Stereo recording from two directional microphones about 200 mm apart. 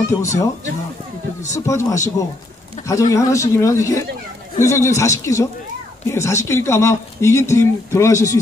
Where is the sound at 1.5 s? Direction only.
15° left (ahead or behind).